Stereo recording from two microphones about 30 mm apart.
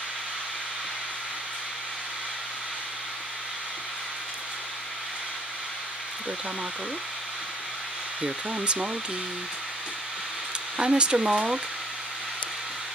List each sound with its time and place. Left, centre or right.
8.5 s speech: right
10.8 s speech: right